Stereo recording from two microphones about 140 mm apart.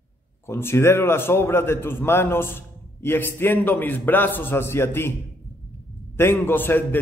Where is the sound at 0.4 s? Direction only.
15° left (ahead or behind).